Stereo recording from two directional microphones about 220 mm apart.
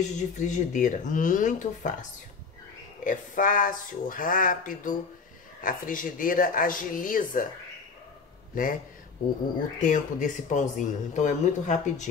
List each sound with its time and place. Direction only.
0.0 s speech: 35° left (ahead or behind)
8.5 s speech: 40° left (ahead or behind)
9.8 s speech: 35° left (ahead or behind)